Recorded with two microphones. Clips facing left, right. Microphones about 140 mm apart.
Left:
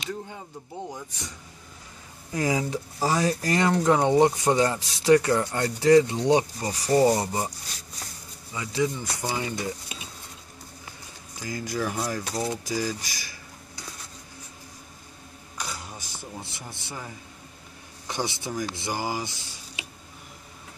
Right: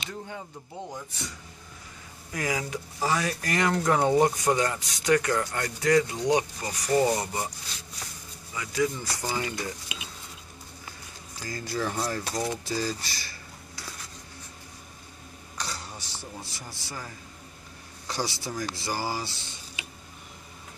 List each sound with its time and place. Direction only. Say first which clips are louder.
2.3 s speech: left 5 dB; 30° left (ahead or behind)
8.5 s speech: left 1 dB; 25° left (ahead or behind)
11.3 s speech: left 2 dB; 15° left (ahead or behind)
12.2 s speech: left 1 dB; 5° right (ahead or behind)
12.4 s speech: left 1 dB; 15° left (ahead or behind)
15.6 s a sound: left 1 dB; 15° left (ahead or behind)
16.2 s speech: left 3 dB; 20° left (ahead or behind)